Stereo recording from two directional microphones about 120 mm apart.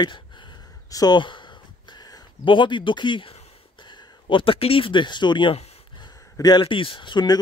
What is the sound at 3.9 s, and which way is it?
Speech, 45° left (ahead or behind).